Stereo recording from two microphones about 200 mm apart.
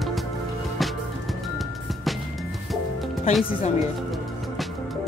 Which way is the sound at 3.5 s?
30° left (ahead or behind).